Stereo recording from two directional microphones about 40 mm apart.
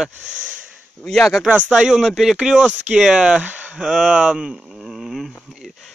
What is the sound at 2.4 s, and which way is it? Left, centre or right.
Speech, right.